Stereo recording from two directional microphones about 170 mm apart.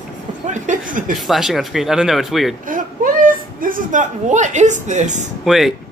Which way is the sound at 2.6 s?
50° right (ahead or behind).